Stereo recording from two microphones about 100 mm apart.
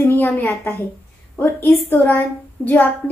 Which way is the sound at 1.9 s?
20° left (ahead or behind).